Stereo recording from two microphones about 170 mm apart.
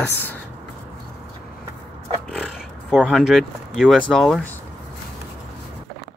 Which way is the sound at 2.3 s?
Centre (ahead or behind).